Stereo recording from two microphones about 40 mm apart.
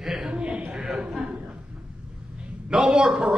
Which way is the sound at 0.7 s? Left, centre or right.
Centre.